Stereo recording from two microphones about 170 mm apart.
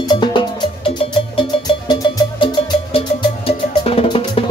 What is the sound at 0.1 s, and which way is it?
Music, 25° left (ahead or behind).